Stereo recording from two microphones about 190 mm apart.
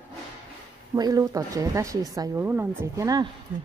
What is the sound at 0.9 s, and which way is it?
A woman's voice, 20° right (ahead or behind).